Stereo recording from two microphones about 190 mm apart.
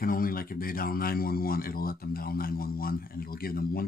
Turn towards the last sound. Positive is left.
turn(degrees=50)  # may be behind; listen again after turning